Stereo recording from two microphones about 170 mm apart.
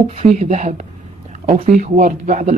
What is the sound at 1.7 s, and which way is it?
Speech, 50° right (ahead or behind).